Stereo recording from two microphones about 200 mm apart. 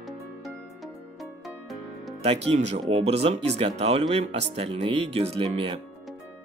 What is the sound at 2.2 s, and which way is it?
Speech, 30° right (ahead or behind).